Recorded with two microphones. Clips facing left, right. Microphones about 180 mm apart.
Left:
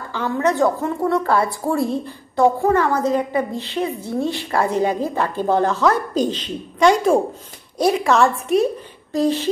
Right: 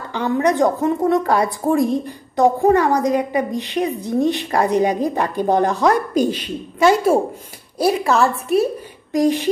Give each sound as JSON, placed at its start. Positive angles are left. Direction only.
{"t": 0.1, "sound": "a woman's voice", "side_deg": -15}
{"t": 9.1, "sound": "a woman's voice", "side_deg": -15}